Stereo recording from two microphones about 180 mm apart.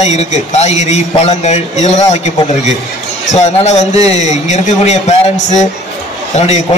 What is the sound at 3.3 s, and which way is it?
A man's voice, 40° left (ahead or behind).